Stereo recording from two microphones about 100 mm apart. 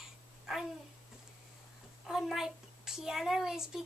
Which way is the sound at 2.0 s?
5° right (ahead or behind).